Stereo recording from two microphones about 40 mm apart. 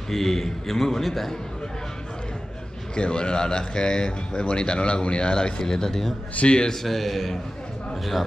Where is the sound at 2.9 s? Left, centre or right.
Left.